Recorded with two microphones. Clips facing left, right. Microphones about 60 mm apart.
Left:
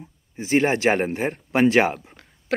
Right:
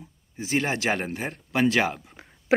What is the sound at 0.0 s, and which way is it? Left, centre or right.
Speech, left.